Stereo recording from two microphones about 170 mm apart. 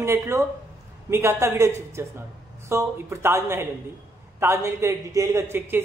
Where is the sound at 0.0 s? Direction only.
15° right (ahead or behind).